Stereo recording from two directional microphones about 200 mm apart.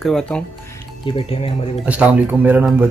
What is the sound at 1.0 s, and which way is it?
Speech, 25° left (ahead or behind).